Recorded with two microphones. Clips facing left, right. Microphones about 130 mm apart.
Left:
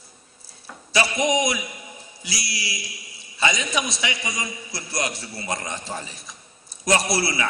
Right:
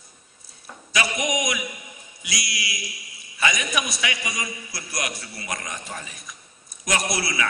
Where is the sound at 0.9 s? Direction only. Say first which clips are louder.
Left 4 dB; 30° left (ahead or behind).